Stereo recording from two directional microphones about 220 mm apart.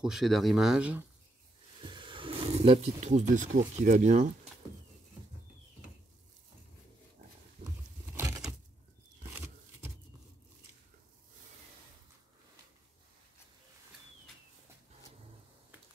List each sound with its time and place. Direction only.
0.0 s speech: centre (ahead or behind)
1.8 s speech: 20° right (ahead or behind)
8.2 s a sound: 5° right (ahead or behind)